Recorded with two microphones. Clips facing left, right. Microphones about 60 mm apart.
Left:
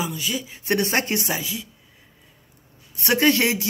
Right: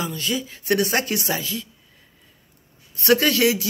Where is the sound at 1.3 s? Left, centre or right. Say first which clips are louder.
Right 1 dB; centre.